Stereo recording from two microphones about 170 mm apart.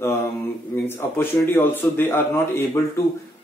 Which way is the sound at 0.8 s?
15° left (ahead or behind).